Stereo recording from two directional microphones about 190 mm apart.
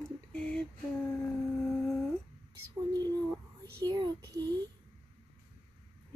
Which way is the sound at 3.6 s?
15° right (ahead or behind).